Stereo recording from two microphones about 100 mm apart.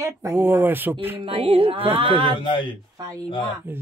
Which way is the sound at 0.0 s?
30° right (ahead or behind).